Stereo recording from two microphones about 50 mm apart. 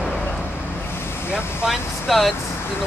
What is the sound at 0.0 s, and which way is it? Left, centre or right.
Vehicle, left.